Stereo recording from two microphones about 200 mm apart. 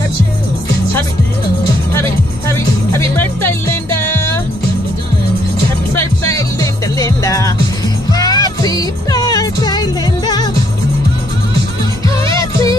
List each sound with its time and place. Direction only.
2.0 s music: 15° left (ahead or behind)
5.9 s music: 15° left (ahead or behind)
12.4 s music: 15° left (ahead or behind)